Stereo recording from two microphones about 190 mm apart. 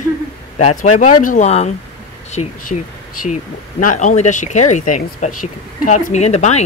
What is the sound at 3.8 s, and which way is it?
Speech, 40° left (ahead or behind).